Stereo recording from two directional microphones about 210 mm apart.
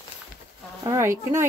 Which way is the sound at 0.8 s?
15° right (ahead or behind).